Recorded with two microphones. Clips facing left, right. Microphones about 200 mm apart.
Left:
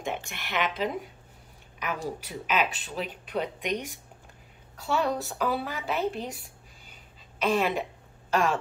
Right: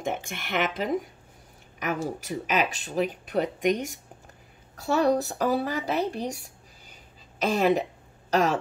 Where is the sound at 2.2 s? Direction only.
45° right (ahead or behind).